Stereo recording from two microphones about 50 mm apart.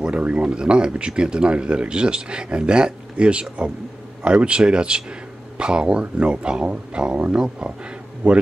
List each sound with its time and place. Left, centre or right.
0.0 s speech: right